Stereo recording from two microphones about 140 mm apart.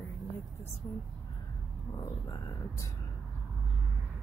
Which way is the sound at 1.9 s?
25° left (ahead or behind).